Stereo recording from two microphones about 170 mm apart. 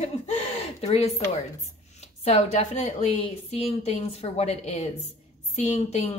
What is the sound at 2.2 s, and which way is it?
A woman's voice, 40° left (ahead or behind).